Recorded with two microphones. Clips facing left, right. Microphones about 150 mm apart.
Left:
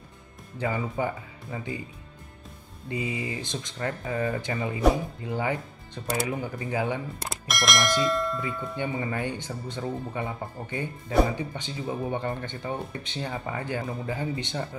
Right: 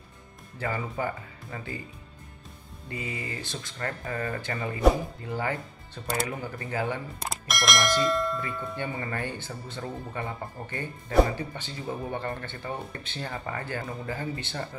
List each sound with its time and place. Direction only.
0.6 s speech: 15° left (ahead or behind)
2.9 s speech: 15° left (ahead or behind)
7.4 s speech: centre (ahead or behind)
8.7 s speech: 15° left (ahead or behind)